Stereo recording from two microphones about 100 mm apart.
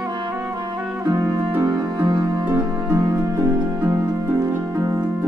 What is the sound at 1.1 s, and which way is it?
Music, 35° right (ahead or behind).